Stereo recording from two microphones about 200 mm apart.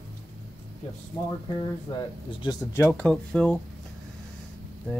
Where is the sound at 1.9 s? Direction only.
20° left (ahead or behind).